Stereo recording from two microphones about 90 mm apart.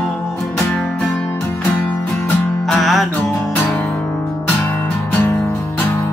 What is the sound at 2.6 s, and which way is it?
Music, centre (ahead or behind).